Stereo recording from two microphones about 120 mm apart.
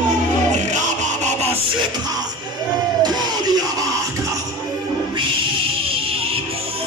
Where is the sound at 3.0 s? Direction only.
35° right (ahead or behind).